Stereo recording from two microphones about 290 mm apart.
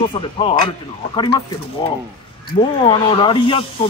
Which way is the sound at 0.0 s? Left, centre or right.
Centre.